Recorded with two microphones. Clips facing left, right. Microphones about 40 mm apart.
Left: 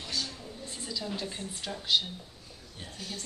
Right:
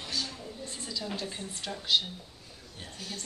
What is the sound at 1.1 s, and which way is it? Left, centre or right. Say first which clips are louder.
Speech: even; centre.